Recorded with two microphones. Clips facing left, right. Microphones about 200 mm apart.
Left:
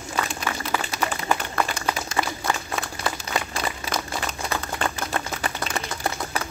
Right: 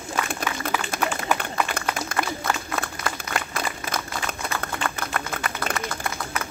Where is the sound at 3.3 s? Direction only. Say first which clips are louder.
Left 1 dB; 30° left (ahead or behind).